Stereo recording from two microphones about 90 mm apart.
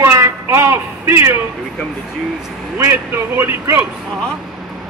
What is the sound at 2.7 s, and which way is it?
A man's voice, 25° right (ahead or behind).